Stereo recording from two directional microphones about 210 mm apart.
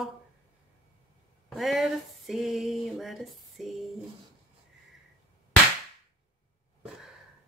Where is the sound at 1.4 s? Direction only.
Centre (ahead or behind).